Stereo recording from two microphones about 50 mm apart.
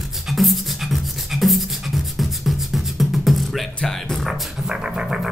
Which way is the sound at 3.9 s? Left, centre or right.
Centre.